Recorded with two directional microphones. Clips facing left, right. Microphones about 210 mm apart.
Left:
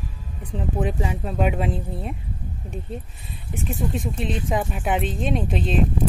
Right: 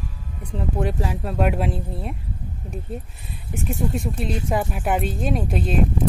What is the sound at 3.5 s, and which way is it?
Speech, centre (ahead or behind).